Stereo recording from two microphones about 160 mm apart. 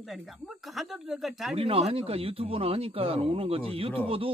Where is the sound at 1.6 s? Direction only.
40° right (ahead or behind).